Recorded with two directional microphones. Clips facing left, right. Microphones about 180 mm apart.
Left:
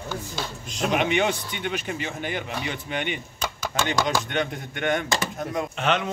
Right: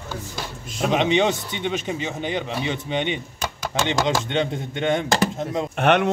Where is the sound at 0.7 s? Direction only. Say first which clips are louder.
Right 3 dB; centre (ahead or behind).